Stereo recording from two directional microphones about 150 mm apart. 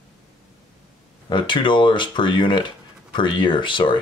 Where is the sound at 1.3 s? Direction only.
30° left (ahead or behind).